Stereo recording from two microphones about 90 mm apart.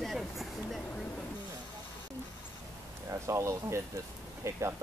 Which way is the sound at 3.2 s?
30° right (ahead or behind).